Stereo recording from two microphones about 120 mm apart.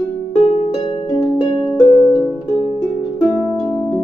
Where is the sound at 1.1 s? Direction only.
30° left (ahead or behind).